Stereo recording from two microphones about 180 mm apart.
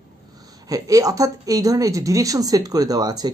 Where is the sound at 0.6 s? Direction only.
20° right (ahead or behind).